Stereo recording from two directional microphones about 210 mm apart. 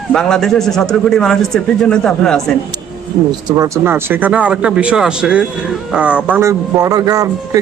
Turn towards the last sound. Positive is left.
turn(degrees=-15)  # may be behind; listen again after turning